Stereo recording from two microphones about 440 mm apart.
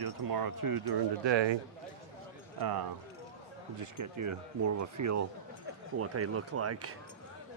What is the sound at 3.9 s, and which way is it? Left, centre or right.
Speech, right.